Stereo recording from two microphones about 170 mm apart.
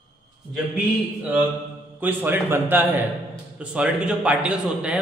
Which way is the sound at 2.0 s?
10° right (ahead or behind).